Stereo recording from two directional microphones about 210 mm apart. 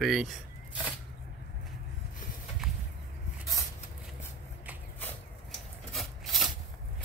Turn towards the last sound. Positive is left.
turn(degrees=0)  # may be behind; listen again after turning